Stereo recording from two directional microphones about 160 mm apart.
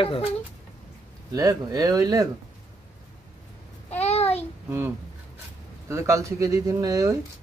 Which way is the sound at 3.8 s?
40° left (ahead or behind).